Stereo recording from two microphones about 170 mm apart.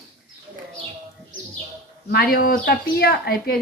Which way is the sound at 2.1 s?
60° left (ahead or behind).